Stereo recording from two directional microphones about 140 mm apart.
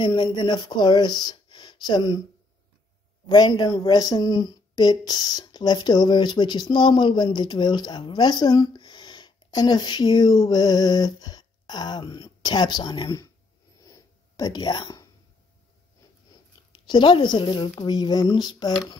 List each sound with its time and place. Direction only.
0.0 s speech: 35° left (ahead or behind)
3.3 s a woman's voice: 30° left (ahead or behind)
13.8 s a sound: 25° left (ahead or behind)
16.8 s a woman's voice: 35° left (ahead or behind)